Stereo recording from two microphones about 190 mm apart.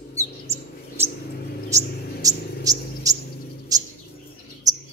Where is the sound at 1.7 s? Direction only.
20° right (ahead or behind).